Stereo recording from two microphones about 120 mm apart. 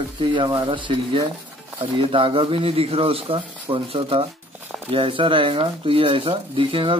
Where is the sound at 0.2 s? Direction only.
40° right (ahead or behind).